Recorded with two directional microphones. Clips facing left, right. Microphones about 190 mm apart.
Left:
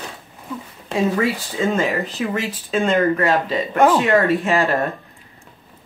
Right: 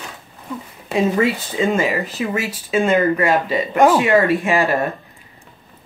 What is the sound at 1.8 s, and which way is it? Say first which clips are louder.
Speech: right 1 dB; 5° right (ahead or behind).